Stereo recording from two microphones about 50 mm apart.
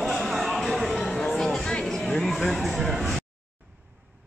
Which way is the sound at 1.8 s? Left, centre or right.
Centre.